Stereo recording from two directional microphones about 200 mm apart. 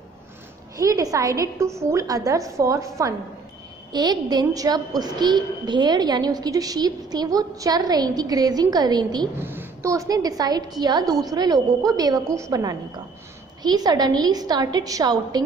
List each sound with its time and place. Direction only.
0.7 s a woman's voice: 15° right (ahead or behind)